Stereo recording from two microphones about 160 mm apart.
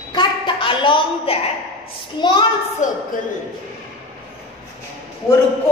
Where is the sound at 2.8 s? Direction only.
50° left (ahead or behind).